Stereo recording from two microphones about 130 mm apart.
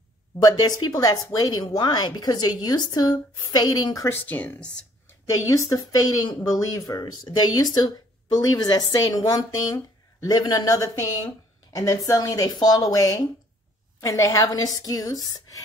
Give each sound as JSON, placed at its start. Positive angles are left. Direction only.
{"t": 0.4, "sound": "speech", "side_deg": 30}
{"t": 4.1, "sound": "speech", "side_deg": 15}
{"t": 5.5, "sound": "speech", "side_deg": 25}